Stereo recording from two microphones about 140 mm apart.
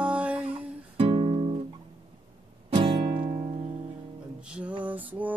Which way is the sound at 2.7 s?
40° right (ahead or behind).